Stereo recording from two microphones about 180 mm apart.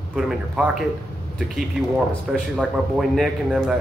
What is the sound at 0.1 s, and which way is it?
Speech, 5° right (ahead or behind).